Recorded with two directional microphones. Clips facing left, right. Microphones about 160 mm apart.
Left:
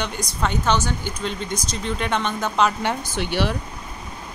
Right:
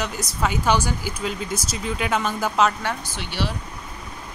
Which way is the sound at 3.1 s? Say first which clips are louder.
Left 5 dB; 55° left (ahead or behind).